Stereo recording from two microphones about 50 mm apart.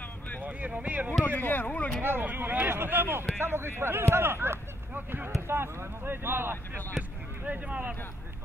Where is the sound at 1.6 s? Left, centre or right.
Left.